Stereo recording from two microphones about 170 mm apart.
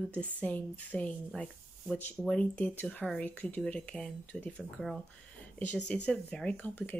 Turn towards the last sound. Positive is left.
turn(degrees=10)  # may be behind; listen again after turning